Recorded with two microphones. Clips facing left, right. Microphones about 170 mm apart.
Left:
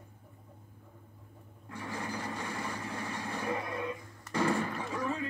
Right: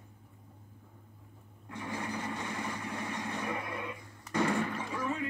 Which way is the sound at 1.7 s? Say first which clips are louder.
Right 1 dB; 25° right (ahead or behind).